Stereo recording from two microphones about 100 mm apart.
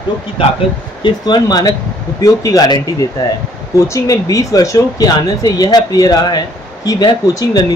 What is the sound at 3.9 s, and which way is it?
Speech, 35° left (ahead or behind).